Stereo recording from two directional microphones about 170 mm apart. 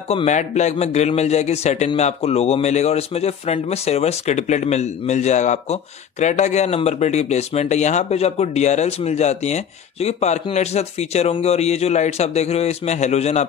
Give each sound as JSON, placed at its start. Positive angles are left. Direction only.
{"t": 0.1, "sound": "a man's voice", "side_deg": 40}